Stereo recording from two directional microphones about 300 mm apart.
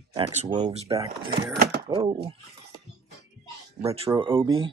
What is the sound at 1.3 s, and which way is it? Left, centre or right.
Speech, right.